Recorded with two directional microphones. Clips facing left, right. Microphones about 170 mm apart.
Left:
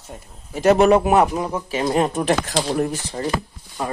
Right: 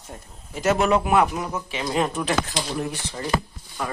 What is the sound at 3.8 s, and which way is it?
Speech, 30° left (ahead or behind).